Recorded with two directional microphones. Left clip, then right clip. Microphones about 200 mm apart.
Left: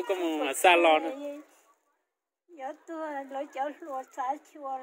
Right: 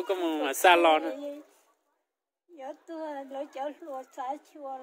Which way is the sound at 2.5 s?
5° right (ahead or behind).